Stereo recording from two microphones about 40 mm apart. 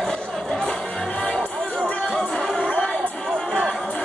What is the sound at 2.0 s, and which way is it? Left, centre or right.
Music, centre.